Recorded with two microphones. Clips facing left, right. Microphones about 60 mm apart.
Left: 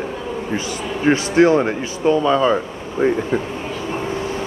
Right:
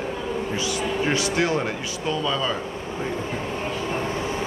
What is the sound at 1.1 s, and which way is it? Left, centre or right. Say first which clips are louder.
Speech: left 12 dB; left.